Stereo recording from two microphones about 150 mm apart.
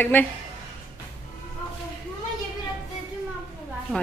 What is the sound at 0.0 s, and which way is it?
Speech, 10° left (ahead or behind).